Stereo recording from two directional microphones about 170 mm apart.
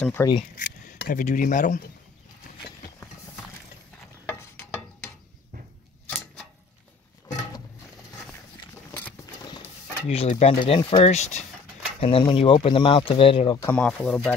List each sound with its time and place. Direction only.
0.0 s speech: 10° left (ahead or behind)
0.6 s a sound: 60° left (ahead or behind)
1.2 s speech: 50° left (ahead or behind)
4.3 s stir: 15° left (ahead or behind)
10.0 s speech: 40° left (ahead or behind)
12.0 s speech: 30° left (ahead or behind)
13.6 s speech: 10° left (ahead or behind)